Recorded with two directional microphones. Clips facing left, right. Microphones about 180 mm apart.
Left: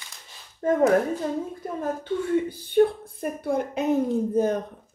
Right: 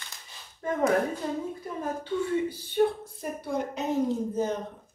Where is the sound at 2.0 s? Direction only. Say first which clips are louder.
Left 3 dB; 55° left (ahead or behind).